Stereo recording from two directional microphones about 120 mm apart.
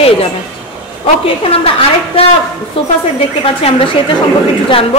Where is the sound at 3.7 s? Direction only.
55° left (ahead or behind).